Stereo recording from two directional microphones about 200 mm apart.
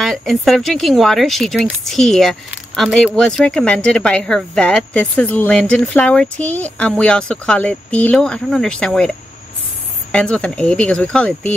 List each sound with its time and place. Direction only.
0.0 s speech: centre (ahead or behind)
10.1 s speech: 5° left (ahead or behind)